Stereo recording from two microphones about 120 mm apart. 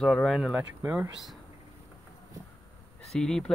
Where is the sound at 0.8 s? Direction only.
20° right (ahead or behind).